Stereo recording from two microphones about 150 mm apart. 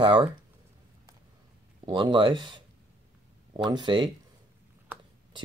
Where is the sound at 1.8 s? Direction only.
30° right (ahead or behind).